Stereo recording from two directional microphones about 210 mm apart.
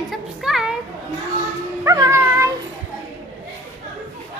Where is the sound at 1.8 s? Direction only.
15° right (ahead or behind).